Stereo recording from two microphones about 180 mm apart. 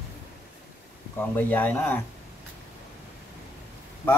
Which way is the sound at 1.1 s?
10° left (ahead or behind).